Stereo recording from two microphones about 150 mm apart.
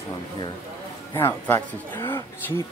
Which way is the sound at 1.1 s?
15° left (ahead or behind).